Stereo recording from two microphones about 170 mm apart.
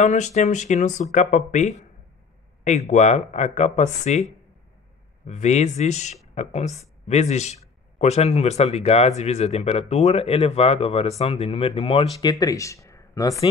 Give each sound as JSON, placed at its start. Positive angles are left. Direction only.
{"t": 0.0, "sound": "speech", "side_deg": 45}
{"t": 2.9, "sound": "speech", "side_deg": 45}
{"t": 5.2, "sound": "a man's voice", "side_deg": 45}